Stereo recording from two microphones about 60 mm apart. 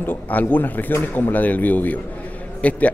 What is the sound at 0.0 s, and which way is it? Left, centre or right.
A man's voice, left.